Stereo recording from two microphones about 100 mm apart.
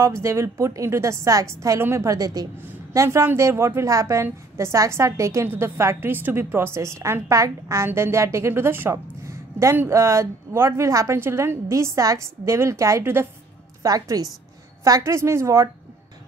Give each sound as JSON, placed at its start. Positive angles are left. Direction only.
{"t": 0.0, "sound": "a woman's voice", "side_deg": -30}
{"t": 13.8, "sound": "a woman's voice", "side_deg": -35}